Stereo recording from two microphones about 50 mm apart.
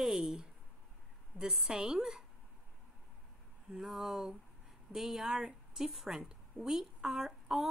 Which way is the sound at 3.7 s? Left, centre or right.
Centre.